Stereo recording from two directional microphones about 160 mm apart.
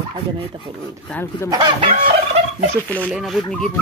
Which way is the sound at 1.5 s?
25° right (ahead or behind).